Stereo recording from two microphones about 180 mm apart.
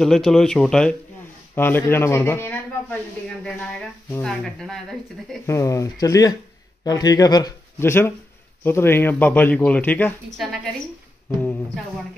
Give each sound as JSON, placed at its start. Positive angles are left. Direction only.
{"t": 0.0, "sound": "speech", "side_deg": 0}
{"t": 5.5, "sound": "speech", "side_deg": 15}